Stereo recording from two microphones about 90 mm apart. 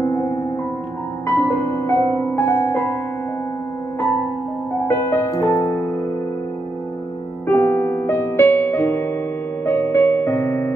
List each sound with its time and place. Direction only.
0.0 s music: 30° left (ahead or behind)
4.8 s music: 30° left (ahead or behind)
7.4 s music: 25° left (ahead or behind)